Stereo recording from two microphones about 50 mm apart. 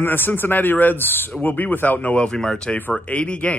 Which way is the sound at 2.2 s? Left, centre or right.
Centre.